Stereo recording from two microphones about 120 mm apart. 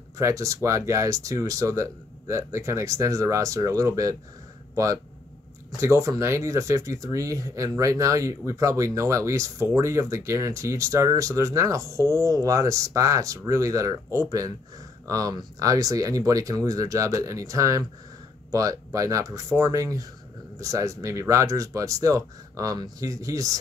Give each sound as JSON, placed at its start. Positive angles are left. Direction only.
{"t": 0.2, "sound": "speech", "side_deg": -25}
{"t": 5.8, "sound": "speech", "side_deg": -25}